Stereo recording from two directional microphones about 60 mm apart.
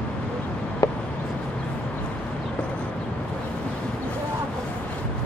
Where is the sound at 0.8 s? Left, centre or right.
Left.